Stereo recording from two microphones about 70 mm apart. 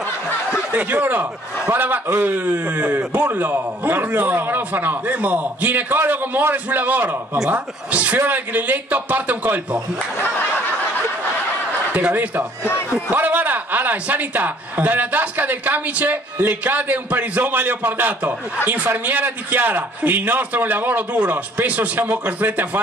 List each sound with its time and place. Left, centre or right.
0.7 s a man's voice: right
11.9 s a man's voice: right